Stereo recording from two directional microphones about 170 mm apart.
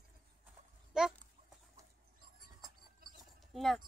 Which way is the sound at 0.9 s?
5° right (ahead or behind).